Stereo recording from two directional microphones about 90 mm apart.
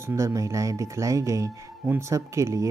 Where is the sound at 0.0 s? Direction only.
35° right (ahead or behind).